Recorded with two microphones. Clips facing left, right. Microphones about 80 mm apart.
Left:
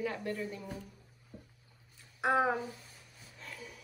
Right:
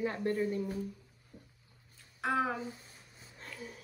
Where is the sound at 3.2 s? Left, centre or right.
Right.